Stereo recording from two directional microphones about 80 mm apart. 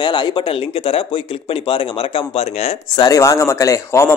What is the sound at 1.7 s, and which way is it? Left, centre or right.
Speech, left.